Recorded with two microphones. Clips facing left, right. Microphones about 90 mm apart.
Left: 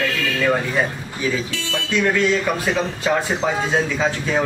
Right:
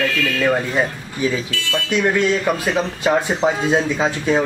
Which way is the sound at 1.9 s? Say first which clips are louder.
Right 1 dB; 15° right (ahead or behind).